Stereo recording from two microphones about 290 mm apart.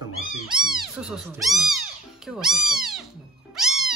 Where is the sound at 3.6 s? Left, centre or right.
Centre.